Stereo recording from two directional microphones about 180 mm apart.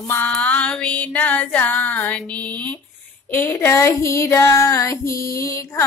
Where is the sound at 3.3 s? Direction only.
10° left (ahead or behind).